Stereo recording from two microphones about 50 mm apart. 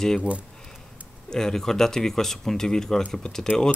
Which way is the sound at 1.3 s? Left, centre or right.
Centre.